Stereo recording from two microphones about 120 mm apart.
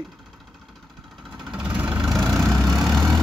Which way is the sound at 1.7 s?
5° right (ahead or behind).